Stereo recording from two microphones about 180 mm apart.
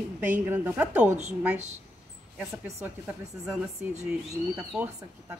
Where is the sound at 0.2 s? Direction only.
10° right (ahead or behind).